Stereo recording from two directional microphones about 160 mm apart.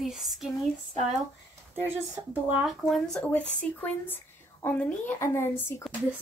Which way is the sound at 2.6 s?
Centre (ahead or behind).